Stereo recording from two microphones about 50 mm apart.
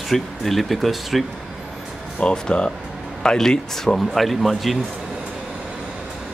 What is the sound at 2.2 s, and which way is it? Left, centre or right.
Speech, centre.